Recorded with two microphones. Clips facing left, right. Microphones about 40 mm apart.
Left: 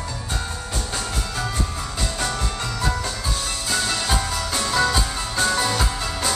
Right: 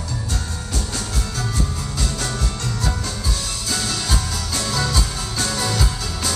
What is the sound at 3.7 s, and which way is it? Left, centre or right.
Music, centre.